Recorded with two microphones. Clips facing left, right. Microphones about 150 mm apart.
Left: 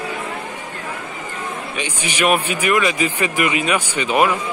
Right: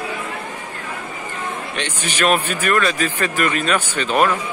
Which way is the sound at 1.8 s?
10° left (ahead or behind).